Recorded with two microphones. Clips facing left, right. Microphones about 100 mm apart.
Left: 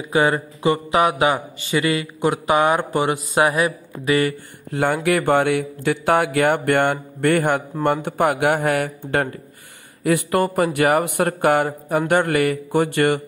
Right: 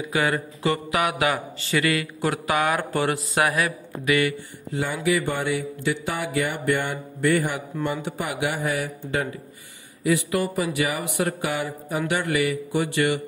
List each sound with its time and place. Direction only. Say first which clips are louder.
0.1 s speech: left 6 dB; 25° left (ahead or behind)
4.7 s speech: left 5 dB; 60° left (ahead or behind)